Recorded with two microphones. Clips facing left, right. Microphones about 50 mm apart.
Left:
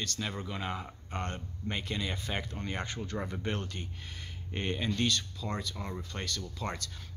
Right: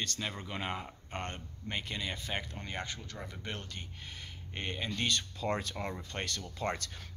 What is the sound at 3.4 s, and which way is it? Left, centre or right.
Speech, centre.